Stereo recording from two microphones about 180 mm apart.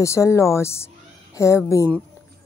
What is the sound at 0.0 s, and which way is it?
A woman's voice, 15° left (ahead or behind).